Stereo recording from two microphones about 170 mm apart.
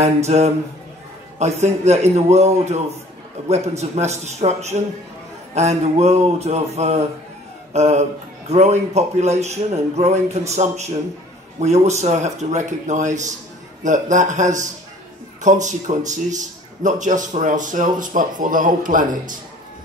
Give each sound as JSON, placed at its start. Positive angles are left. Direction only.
{"t": 0.0, "sound": "a man's voice", "side_deg": -40}